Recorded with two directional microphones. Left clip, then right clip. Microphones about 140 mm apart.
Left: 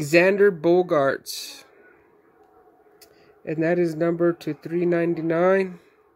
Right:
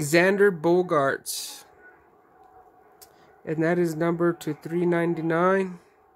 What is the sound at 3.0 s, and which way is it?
Speech, 10° left (ahead or behind).